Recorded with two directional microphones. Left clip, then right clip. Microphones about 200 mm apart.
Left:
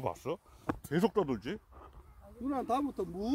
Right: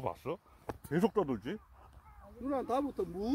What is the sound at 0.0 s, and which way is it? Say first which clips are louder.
Speech: left 2 dB; 25° left (ahead or behind).